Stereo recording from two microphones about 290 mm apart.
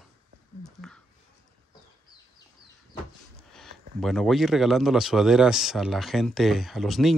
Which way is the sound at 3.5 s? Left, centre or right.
Centre.